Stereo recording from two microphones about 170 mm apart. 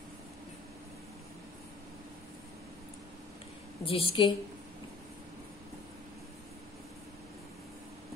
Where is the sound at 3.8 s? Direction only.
35° left (ahead or behind).